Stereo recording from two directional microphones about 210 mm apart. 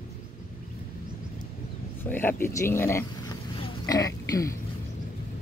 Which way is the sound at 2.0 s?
10° left (ahead or behind).